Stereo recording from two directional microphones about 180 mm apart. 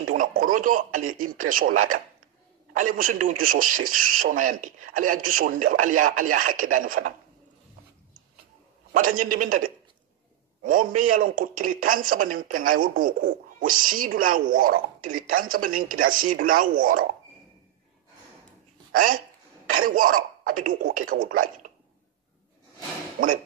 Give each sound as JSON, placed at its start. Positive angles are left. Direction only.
{"t": 0.1, "sound": "a man's voice", "side_deg": -50}
{"t": 8.9, "sound": "a man's voice", "side_deg": -50}
{"t": 18.9, "sound": "speech", "side_deg": -50}
{"t": 23.2, "sound": "a man's voice", "side_deg": -50}